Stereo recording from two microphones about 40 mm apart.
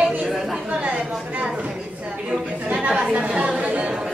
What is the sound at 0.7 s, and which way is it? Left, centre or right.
A woman's voice, right.